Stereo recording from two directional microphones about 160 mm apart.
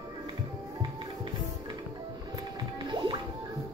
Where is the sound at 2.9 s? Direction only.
30° right (ahead or behind).